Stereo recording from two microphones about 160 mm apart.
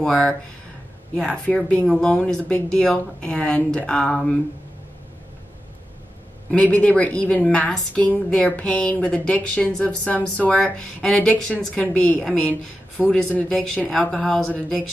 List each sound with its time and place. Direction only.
0.0 s a woman's voice: 5° left (ahead or behind)
6.5 s a woman's voice: 10° left (ahead or behind)